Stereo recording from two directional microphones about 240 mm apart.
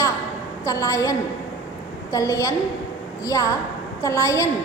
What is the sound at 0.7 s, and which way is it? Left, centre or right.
A woman's voice, centre.